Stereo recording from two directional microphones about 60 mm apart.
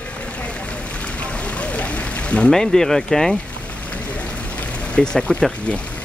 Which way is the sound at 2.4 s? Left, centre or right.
Centre.